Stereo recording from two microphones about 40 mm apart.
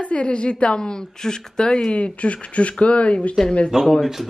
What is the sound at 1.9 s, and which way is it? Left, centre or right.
Speech, left.